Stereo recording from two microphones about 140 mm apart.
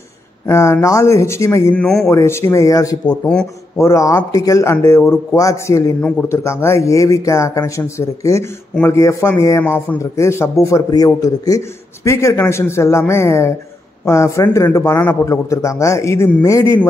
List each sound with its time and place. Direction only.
0.5 s a man's voice: 20° left (ahead or behind)
1.8 s speech: centre (ahead or behind)
2.0 s a man's voice: 20° left (ahead or behind)
3.1 s speech: 5° left (ahead or behind)
3.7 s a man's voice: 20° left (ahead or behind)